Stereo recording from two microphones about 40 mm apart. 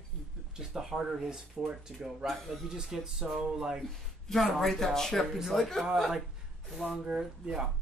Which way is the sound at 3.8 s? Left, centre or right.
Centre.